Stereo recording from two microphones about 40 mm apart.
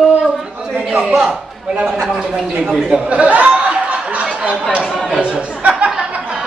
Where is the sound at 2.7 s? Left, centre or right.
Right.